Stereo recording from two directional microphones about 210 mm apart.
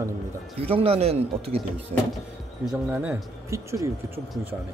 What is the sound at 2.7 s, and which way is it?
Speech, 5° right (ahead or behind).